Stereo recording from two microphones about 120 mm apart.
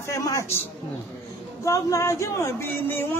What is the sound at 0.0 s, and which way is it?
Speech, 25° left (ahead or behind).